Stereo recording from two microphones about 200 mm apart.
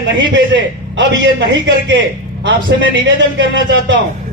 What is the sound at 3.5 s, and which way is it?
Speech, 60° right (ahead or behind).